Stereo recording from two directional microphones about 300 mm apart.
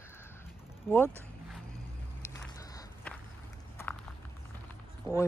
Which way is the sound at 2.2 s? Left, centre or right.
Centre.